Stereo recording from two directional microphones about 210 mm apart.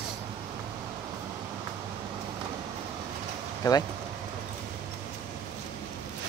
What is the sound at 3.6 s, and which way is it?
Speech, 15° left (ahead or behind).